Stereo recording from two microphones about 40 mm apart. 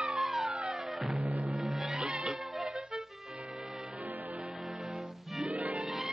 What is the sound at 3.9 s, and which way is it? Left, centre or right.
Music, right.